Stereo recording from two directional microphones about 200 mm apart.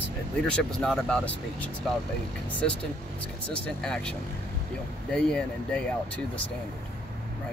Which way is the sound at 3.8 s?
5° left (ahead or behind).